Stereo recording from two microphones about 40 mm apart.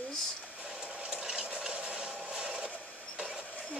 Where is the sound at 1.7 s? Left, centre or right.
Right.